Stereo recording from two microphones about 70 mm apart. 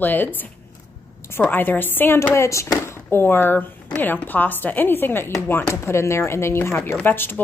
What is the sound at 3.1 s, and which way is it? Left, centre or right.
Speech, left.